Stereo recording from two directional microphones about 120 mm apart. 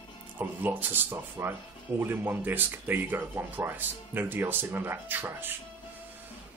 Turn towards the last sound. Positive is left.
turn(degrees=-15)  # may be behind; listen again after turning